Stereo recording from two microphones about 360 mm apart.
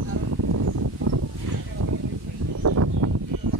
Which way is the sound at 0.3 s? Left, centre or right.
Right.